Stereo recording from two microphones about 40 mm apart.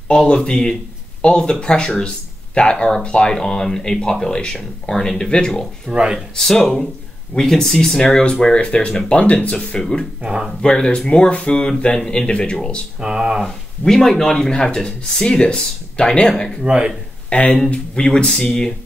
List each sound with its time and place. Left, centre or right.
0.1 s speech: left
3.3 s speech: centre
5.9 s speech: right
6.4 s speech: centre
8.0 s speech: left
9.7 s speech: centre
13.0 s speech: right
13.8 s speech: centre
16.6 s speech: right
17.3 s speech: left
17.9 s speech: left